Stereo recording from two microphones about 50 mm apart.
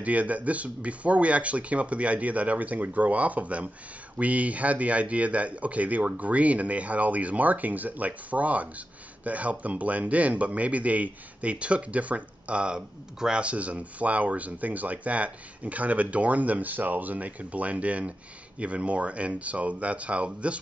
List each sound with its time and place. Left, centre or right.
0.0 s a man's voice: right